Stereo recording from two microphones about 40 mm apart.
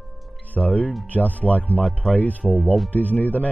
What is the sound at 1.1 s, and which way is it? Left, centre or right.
Speech, left.